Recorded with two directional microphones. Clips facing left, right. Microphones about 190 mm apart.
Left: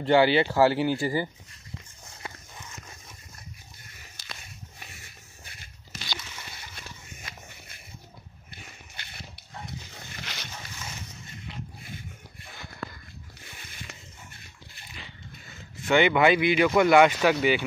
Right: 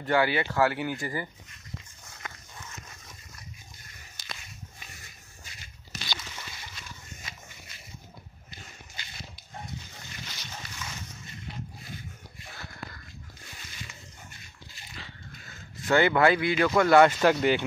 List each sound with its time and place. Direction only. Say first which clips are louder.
0.0 s speech: left 5 dB; 25° left (ahead or behind)
9.0 s dog: even; 60° left (ahead or behind)
10.3 s dog: left 5 dB; 80° left
15.9 s speech: left 1 dB; 15° left (ahead or behind)